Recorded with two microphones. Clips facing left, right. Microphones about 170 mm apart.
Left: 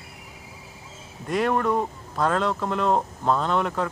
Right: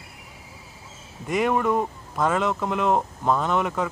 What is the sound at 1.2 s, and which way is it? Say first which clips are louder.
A man's voice: right 1 dB; 5° right (ahead or behind).